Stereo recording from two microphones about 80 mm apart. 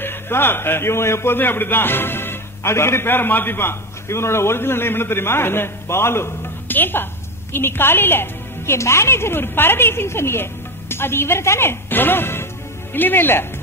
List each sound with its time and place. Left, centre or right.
0.0 s a man's voice: left